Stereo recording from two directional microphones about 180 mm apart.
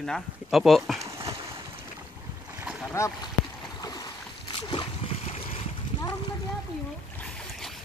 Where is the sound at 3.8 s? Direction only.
20° left (ahead or behind).